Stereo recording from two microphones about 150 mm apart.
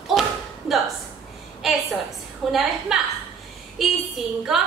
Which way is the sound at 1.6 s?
Centre (ahead or behind).